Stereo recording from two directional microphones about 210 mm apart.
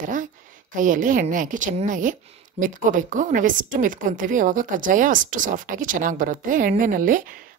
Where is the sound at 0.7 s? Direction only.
40° right (ahead or behind).